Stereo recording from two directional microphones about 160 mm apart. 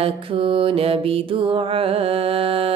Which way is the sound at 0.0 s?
35° right (ahead or behind).